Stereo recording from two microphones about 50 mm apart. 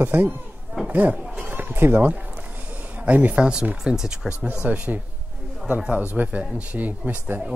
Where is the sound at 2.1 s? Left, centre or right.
Right.